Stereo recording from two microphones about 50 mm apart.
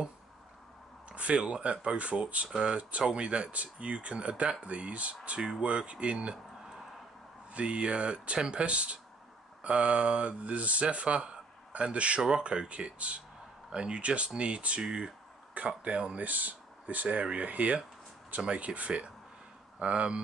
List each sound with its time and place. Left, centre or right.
1.1 s speech: right
7.5 s speech: right
15.5 s speech: right